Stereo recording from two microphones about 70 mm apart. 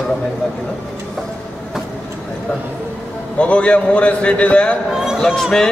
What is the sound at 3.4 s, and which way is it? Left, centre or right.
A man's voice, centre.